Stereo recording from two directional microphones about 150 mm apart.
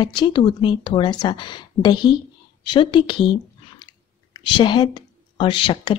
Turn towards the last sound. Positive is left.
turn(degrees=35)  # may be behind; listen again after turning